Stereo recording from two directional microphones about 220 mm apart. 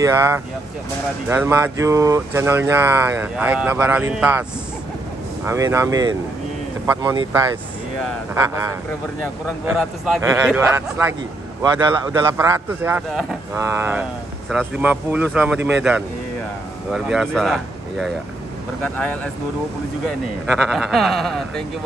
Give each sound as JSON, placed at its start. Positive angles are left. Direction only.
{"t": 0.0, "sound": "speech", "side_deg": -10}
{"t": 9.7, "sound": "speech", "side_deg": -10}
{"t": 20.7, "sound": "speech", "side_deg": 0}